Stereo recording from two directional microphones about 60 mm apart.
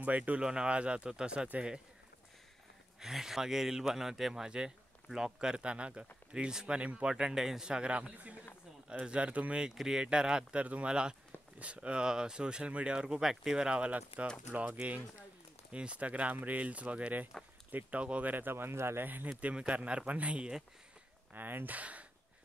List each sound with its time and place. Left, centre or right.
0.0 s speech: right
0.4 s speech: centre
3.0 s speech: centre; by 9.6 s right
9.6 s speech: centre; by 19.0 s right
19.4 s speech: centre
21.3 s speech: right